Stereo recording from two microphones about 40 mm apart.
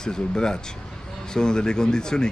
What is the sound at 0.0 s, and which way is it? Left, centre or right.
Speech, centre.